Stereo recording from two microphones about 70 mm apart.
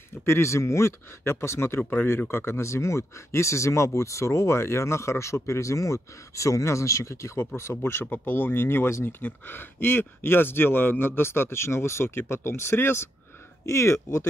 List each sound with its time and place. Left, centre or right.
0.2 s speech: left
1.8 s speech: left
2.0 s speech: left